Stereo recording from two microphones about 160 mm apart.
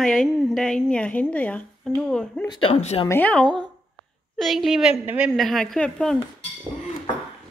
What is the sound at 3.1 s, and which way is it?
Speech, 10° left (ahead or behind).